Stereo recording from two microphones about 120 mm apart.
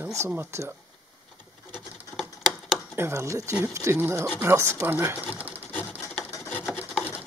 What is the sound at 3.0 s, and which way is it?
Speech, 25° right (ahead or behind).